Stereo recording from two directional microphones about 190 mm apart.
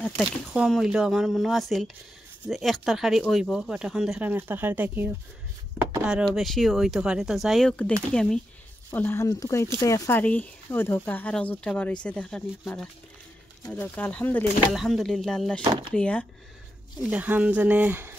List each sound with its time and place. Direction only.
0.0 s speech: centre (ahead or behind)
17.0 s speech: 10° right (ahead or behind)